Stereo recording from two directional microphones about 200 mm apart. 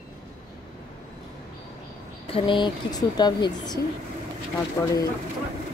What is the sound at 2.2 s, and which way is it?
Speech, 25° left (ahead or behind).